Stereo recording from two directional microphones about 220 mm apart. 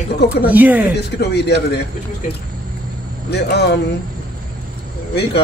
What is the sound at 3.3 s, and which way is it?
Speech, 50° left (ahead or behind).